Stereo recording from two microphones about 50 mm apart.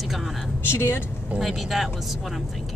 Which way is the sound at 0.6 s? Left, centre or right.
Left.